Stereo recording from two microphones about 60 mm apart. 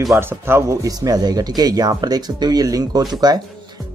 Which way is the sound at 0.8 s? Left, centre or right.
Right.